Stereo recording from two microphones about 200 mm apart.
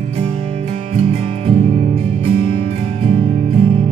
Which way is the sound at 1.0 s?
30° right (ahead or behind).